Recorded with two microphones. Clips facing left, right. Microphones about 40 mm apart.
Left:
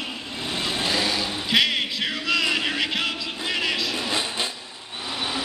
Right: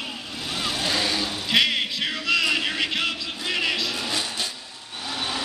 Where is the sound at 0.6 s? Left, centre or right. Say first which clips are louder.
Even; centre.